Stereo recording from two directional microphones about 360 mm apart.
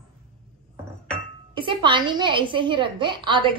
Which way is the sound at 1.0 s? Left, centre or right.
Centre.